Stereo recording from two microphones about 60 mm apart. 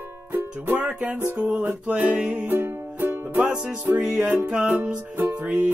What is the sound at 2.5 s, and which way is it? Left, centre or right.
Music, right.